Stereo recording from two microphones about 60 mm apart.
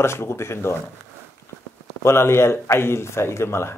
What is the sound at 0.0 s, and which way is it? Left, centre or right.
Speech, left.